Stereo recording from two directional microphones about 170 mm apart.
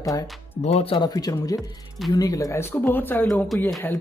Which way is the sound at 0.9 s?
20° left (ahead or behind).